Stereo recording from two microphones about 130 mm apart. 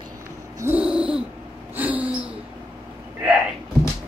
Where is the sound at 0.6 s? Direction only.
10° right (ahead or behind).